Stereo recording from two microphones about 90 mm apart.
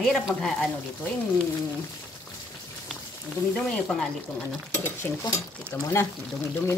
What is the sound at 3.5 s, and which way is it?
Speech, 10° left (ahead or behind).